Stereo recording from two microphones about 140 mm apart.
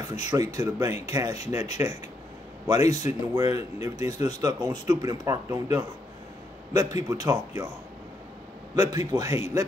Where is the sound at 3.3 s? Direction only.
20° right (ahead or behind).